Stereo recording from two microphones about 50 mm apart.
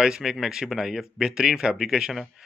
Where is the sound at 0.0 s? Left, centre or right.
Centre.